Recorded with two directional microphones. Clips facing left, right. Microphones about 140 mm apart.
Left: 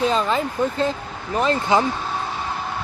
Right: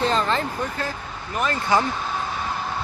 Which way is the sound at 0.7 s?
25° left (ahead or behind).